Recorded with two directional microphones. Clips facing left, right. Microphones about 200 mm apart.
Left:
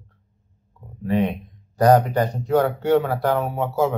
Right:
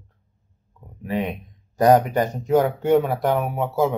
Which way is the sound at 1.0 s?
15° right (ahead or behind).